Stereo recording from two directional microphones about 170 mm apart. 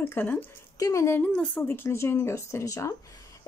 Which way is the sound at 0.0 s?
10° left (ahead or behind).